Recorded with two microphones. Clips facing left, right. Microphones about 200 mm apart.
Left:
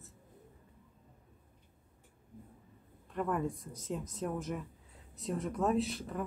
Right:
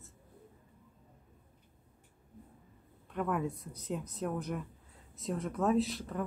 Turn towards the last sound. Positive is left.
turn(degrees=0)  # may be behind; listen again after turning